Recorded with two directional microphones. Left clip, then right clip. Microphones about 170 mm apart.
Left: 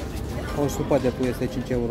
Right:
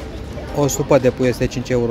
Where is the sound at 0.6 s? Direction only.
70° right (ahead or behind).